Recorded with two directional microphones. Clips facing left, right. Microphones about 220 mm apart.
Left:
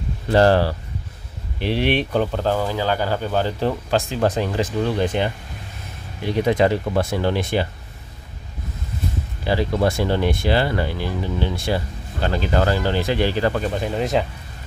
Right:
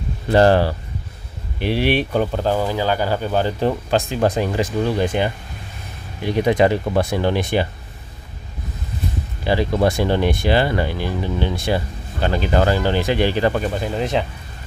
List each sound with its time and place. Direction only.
0.3 s speech: 15° right (ahead or behind)
9.4 s speech: 20° right (ahead or behind)
13.7 s speech: centre (ahead or behind)